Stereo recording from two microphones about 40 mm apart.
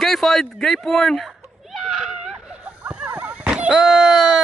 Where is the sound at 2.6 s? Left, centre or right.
Right.